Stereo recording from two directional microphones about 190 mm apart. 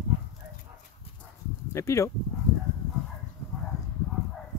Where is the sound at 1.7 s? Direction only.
15° left (ahead or behind).